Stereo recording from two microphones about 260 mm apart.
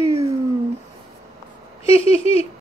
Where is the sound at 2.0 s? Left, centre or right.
Left.